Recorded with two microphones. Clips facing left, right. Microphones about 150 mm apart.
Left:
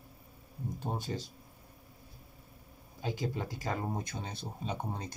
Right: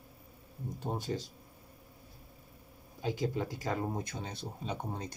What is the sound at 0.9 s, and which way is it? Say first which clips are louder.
Speech: right 1 dB; 10° left (ahead or behind).